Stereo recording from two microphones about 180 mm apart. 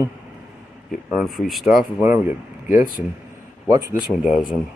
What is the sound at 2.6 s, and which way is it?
Speech, 45° left (ahead or behind).